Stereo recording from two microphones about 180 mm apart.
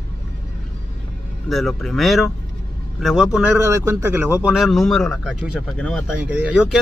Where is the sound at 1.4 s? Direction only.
Centre (ahead or behind).